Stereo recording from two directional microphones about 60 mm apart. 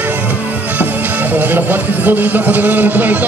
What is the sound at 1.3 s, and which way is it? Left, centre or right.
A man's voice, right.